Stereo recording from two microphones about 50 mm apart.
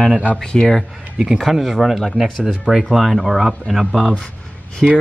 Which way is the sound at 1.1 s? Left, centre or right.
Centre.